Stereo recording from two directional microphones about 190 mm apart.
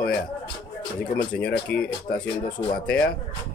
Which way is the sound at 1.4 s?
65° left (ahead or behind).